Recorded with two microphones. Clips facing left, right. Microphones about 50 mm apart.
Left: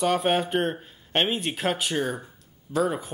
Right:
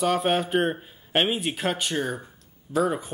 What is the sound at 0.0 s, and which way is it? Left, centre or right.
Speech, centre.